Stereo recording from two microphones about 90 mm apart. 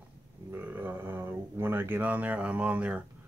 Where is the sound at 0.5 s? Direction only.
20° right (ahead or behind).